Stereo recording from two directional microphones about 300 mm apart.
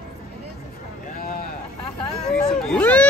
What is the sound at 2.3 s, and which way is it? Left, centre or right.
Speech, centre.